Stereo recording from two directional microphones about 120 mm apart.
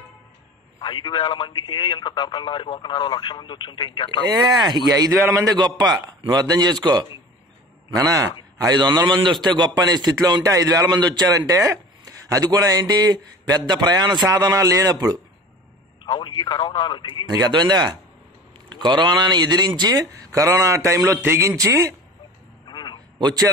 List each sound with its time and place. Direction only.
0.7 s speech: 40° left (ahead or behind)
4.3 s a man's voice: 35° right (ahead or behind)
16.1 s speech: 40° left (ahead or behind)
17.4 s a man's voice: 40° right (ahead or behind)
22.7 s a sound: 40° left (ahead or behind)
23.1 s a man's voice: 35° right (ahead or behind)